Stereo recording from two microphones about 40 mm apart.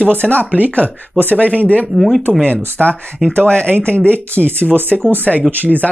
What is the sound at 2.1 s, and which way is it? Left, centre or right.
Speech, left.